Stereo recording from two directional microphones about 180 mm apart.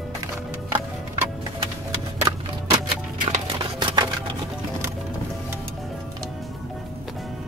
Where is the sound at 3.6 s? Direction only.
25° right (ahead or behind).